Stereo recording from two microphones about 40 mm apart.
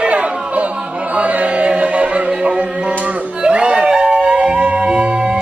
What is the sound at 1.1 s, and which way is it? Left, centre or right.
Chant, right.